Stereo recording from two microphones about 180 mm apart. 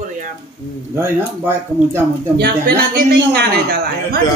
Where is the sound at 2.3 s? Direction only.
60° right (ahead or behind).